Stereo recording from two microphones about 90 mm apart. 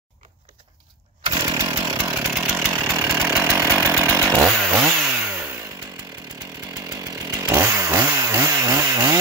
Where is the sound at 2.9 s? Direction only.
25° right (ahead or behind).